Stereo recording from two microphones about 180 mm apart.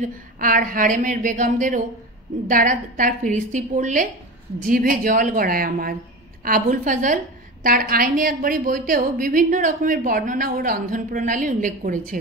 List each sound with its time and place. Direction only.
0.0 s speech: 45° right (ahead or behind)